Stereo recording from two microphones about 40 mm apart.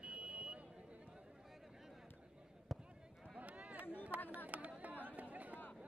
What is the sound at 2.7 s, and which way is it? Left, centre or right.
Basketball bounce, centre.